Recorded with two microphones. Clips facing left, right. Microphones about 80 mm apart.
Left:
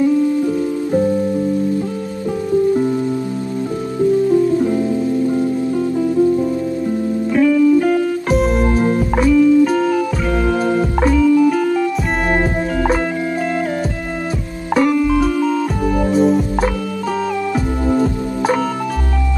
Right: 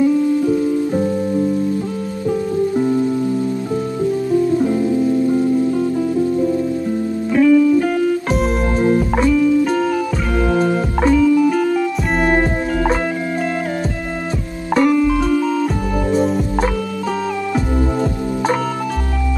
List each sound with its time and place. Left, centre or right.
5.6 s music: centre
7.2 s music: centre
14.7 s music: centre